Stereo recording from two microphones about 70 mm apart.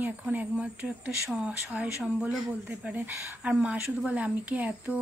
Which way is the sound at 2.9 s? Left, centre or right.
Right.